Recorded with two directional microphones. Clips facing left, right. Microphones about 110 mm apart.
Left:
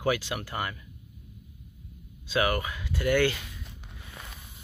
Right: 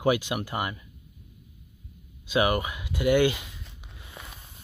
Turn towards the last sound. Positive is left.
turn(degrees=-15)  # may be behind; listen again after turning